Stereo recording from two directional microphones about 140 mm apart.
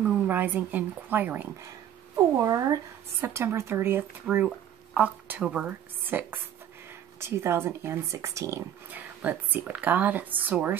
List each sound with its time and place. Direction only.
0.1 s speech: 10° right (ahead or behind)
2.4 s speech: 25° right (ahead or behind)